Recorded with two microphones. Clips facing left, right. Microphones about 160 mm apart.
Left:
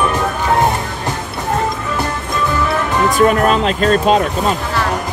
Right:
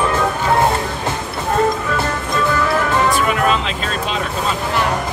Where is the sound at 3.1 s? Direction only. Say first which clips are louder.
Left 5 dB; 45° left (ahead or behind).